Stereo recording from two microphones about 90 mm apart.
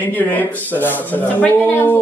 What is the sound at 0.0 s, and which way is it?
A man's voice, 20° left (ahead or behind).